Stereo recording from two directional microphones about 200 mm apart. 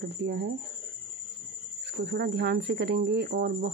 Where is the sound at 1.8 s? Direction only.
55° right (ahead or behind).